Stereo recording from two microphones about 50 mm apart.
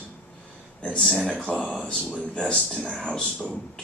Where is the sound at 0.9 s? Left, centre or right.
Centre.